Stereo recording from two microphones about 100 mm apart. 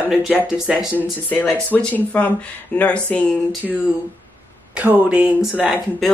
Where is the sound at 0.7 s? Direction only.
10° right (ahead or behind).